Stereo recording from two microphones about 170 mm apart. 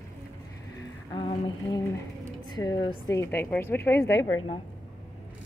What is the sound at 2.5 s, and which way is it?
Speech, 25° left (ahead or behind).